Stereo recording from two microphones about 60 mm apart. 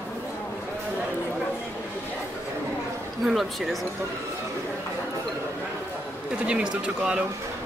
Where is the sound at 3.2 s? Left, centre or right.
Centre.